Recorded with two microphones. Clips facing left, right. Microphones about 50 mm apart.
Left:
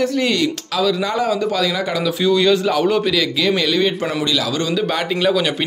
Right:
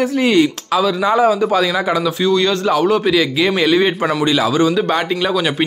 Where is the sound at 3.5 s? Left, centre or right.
Right.